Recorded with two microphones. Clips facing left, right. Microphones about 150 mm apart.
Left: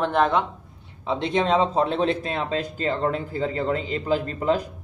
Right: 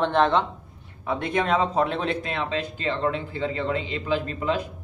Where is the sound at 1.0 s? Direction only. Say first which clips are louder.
Left 2 dB; 20° left (ahead or behind); by 4.6 s 40° left (ahead or behind).